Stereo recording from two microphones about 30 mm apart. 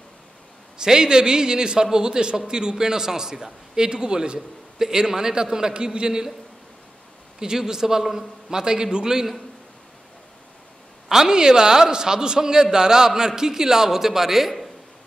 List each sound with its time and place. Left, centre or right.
0.7 s a man's voice: right
7.3 s a man's voice: right
11.1 s a man's voice: right; by 14.7 s centre